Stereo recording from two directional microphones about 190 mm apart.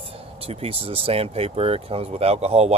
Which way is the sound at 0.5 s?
30° right (ahead or behind).